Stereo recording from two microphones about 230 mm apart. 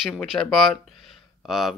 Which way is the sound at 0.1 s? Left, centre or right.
Centre.